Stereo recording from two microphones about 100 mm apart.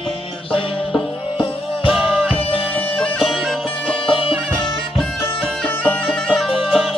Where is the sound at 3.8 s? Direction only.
65° left (ahead or behind).